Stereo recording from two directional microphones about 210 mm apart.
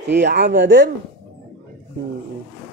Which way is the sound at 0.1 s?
55° right (ahead or behind).